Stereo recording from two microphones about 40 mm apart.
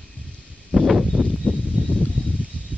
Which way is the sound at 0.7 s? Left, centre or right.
Centre.